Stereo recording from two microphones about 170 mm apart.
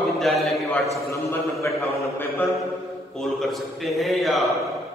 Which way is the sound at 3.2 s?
Centre (ahead or behind).